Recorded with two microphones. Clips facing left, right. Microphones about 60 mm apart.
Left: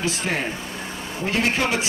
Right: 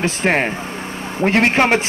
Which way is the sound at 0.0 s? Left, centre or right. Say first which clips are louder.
Right 7 dB; right.